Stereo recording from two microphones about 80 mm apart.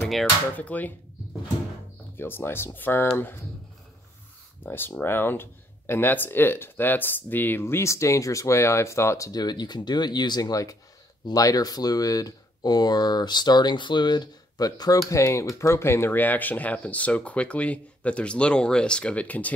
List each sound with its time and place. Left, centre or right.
0.6 s speech: centre
2.1 s speech: left
4.6 s speech: left
9.3 s speech: left
15.0 s speech: left; by 19.5 s centre